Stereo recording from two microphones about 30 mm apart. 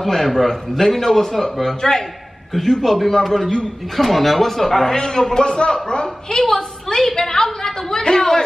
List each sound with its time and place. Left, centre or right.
0.0 s a man's voice: centre
1.8 s a woman's voice: centre
2.5 s a man's voice: centre